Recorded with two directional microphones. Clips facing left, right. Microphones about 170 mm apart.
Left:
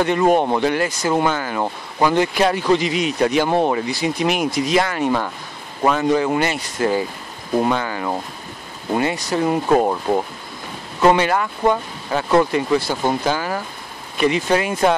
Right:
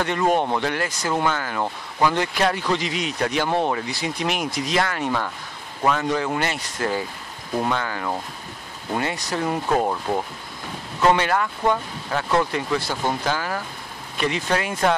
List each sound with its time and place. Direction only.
0.0 s speech: 10° left (ahead or behind)
11.0 s speech: 10° left (ahead or behind)